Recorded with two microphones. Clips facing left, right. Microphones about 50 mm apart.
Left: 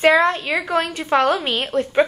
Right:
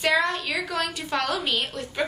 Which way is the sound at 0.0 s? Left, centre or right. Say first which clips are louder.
Left 8 dB; left.